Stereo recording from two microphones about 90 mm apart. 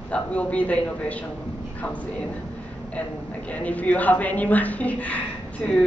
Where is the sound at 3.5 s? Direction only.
15° left (ahead or behind).